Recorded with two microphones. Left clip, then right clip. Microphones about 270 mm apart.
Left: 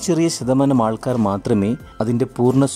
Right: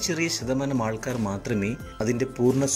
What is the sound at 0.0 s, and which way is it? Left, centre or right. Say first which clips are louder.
Speech: left 8 dB; left.